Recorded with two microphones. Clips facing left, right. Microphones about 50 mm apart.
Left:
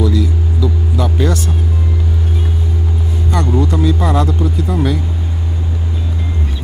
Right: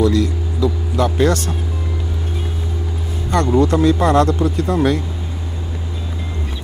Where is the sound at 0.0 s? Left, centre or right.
Right.